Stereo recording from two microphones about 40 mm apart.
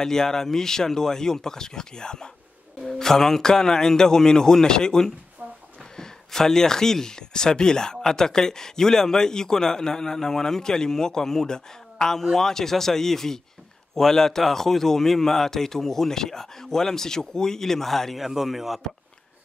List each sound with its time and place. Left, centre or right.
0.0 s speech: centre
5.4 s a sound: right
5.9 s speech: centre
18.1 s speech: centre